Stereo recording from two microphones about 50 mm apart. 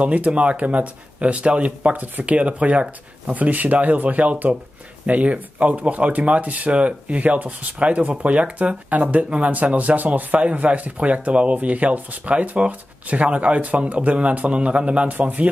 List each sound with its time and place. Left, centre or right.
0.0 s a man's voice: right